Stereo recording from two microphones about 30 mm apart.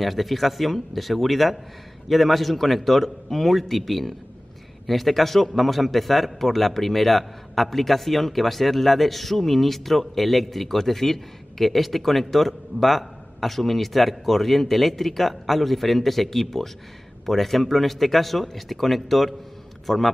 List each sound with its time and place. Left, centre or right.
0.0 s a man's voice: centre